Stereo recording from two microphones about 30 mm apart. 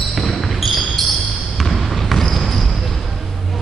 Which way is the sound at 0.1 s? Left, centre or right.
Centre.